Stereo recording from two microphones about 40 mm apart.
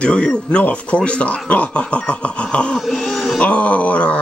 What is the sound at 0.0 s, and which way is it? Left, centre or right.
Speech, left.